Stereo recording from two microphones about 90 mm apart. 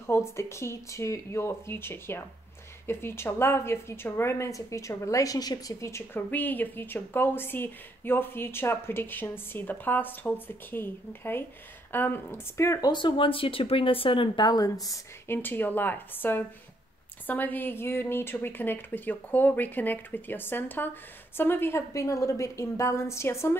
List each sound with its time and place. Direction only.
0.0 s a woman's voice: 30° left (ahead or behind); by 5.8 s 45° left (ahead or behind)
5.8 s a woman's voice: 30° left (ahead or behind)
6.3 s a woman's voice: 20° left (ahead or behind)
12.8 s speech: 60° left (ahead or behind)
15.2 s a woman's voice: 25° left (ahead or behind)